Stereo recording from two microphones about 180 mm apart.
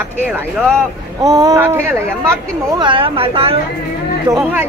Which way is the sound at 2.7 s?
25° right (ahead or behind).